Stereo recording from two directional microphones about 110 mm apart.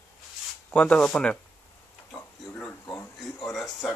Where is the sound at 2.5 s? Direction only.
15° left (ahead or behind).